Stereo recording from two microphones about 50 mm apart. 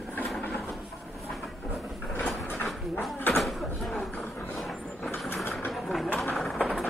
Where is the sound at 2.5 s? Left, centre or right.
Centre.